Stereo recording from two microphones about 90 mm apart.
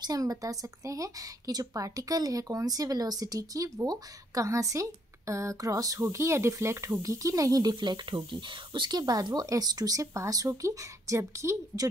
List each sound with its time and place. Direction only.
0.0 s a woman's voice: 45° right (ahead or behind)
7.7 s speech: 60° right (ahead or behind); by 11.5 s 30° right (ahead or behind)